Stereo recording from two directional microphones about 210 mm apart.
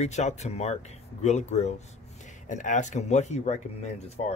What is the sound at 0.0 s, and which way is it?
Speech, 30° left (ahead or behind).